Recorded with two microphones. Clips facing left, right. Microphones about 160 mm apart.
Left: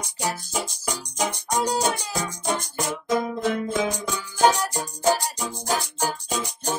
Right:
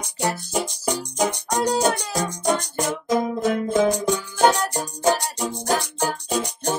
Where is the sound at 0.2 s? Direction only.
60° right (ahead or behind); by 3.9 s 45° right (ahead or behind).